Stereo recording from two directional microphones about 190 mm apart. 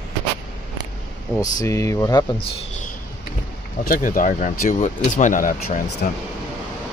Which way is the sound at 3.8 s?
45° left (ahead or behind).